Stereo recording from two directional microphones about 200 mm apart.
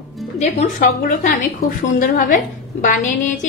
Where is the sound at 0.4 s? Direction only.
40° left (ahead or behind).